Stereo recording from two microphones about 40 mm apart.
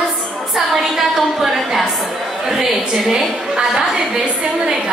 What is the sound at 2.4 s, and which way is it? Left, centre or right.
A woman's voice, centre.